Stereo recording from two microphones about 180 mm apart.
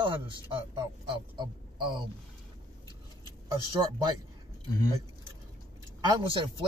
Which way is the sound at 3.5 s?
20° right (ahead or behind).